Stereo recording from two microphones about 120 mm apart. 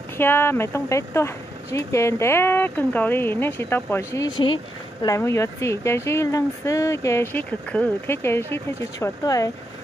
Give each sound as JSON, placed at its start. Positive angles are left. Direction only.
{"t": 0.2, "sound": "speech", "side_deg": 20}